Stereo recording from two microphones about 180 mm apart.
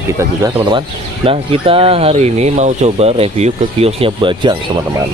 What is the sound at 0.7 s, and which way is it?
Speech, 30° right (ahead or behind).